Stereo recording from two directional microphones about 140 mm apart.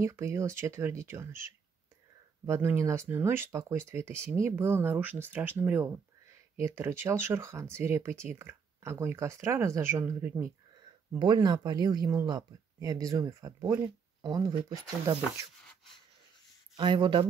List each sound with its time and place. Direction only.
0.0 s speech: 20° right (ahead or behind)
2.4 s speech: 15° right (ahead or behind)
11.1 s speech: 30° right (ahead or behind)
16.7 s speech: 35° right (ahead or behind)